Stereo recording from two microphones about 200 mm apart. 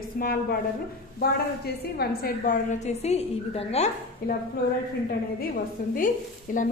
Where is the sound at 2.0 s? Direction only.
50° left (ahead or behind).